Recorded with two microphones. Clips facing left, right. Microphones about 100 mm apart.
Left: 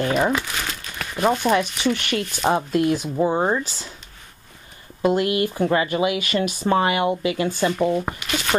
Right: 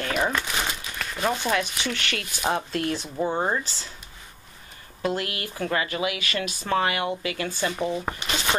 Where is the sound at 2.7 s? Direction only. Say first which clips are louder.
Left 8 dB; 15° left (ahead or behind).